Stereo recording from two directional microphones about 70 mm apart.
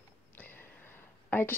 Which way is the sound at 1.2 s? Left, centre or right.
Left.